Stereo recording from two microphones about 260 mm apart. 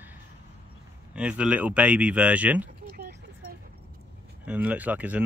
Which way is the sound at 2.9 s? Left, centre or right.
Right.